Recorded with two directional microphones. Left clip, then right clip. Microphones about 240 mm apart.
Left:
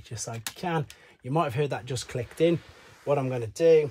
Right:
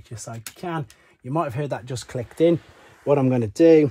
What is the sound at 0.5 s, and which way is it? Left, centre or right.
Speech, centre.